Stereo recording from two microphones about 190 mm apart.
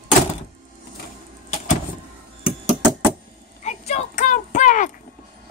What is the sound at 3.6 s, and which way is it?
Speech, 35° left (ahead or behind).